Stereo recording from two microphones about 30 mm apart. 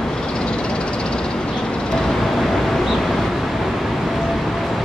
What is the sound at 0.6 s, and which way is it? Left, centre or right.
Vehicle, left.